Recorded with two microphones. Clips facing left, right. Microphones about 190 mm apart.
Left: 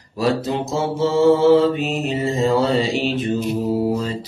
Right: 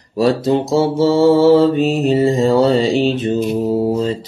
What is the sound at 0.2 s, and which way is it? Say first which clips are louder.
Mantra: right 6 dB; 35° right (ahead or behind).